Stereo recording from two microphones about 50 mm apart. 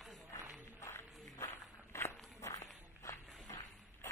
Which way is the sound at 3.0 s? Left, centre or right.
Left.